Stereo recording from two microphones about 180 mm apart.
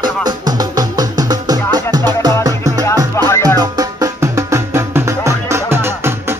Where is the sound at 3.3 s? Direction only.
15° left (ahead or behind).